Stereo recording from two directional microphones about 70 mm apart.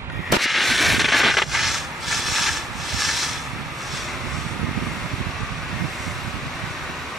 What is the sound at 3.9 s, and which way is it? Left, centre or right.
Vehicle, centre.